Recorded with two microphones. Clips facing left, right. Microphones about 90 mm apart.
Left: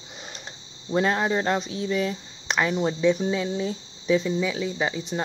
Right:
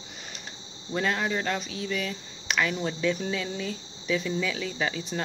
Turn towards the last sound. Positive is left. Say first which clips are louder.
# left 3 dB
turn(degrees=20)  # may be behind; listen again after turning